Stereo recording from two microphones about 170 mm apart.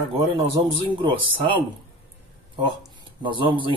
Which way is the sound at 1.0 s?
30° right (ahead or behind).